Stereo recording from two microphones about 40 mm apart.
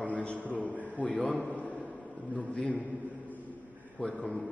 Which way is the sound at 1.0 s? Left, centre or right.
Left.